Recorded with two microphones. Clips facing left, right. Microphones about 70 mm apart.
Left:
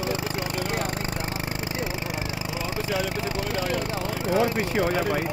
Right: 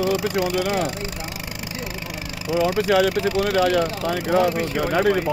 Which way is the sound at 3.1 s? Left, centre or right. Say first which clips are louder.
Right 8 dB; left.